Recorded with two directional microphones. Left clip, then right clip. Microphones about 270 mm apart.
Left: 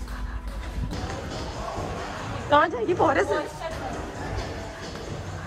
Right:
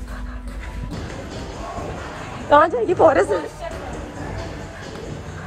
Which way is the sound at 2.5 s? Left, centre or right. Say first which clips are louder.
Right 6 dB; centre.